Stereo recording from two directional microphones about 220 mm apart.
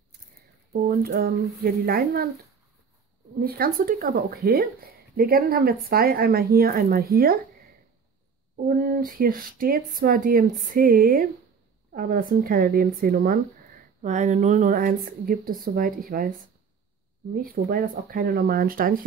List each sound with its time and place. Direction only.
0.8 s speech: 45° right (ahead or behind)
3.3 s speech: 45° right (ahead or behind)
8.6 s speech: 40° right (ahead or behind)